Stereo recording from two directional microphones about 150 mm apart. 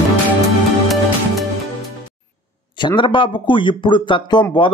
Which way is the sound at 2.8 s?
30° left (ahead or behind).